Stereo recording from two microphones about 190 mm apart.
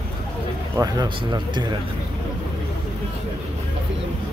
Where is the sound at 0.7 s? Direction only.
20° right (ahead or behind).